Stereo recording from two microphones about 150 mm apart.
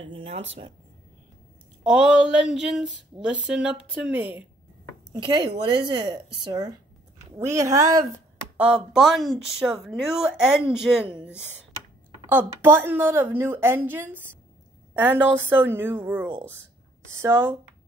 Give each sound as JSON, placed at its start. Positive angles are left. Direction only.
{"t": 0.1, "sound": "speech", "side_deg": -45}
{"t": 1.8, "sound": "speech", "side_deg": -5}
{"t": 5.1, "sound": "a woman's voice", "side_deg": -30}
{"t": 8.5, "sound": "speech", "side_deg": -5}
{"t": 12.3, "sound": "a woman's voice", "side_deg": -15}